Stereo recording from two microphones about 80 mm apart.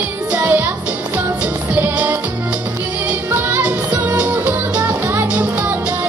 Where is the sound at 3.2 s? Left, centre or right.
Right.